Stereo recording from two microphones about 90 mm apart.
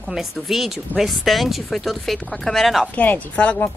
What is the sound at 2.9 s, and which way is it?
Speech, 20° left (ahead or behind).